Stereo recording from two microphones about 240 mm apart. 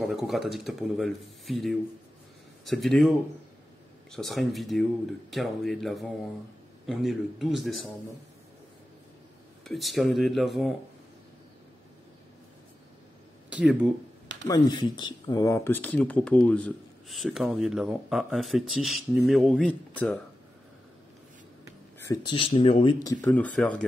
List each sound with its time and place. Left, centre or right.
0.0 s speech: centre
9.7 s speech: centre
13.5 s speech: centre
14.7 s speech: centre
22.0 s speech: centre
23.2 s speech: centre